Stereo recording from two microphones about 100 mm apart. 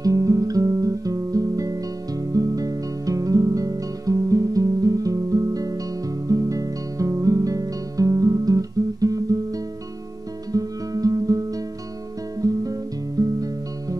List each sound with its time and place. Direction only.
0.0 s music: 35° right (ahead or behind)
12.4 s guitar: 35° right (ahead or behind)
13.2 s music: 35° right (ahead or behind)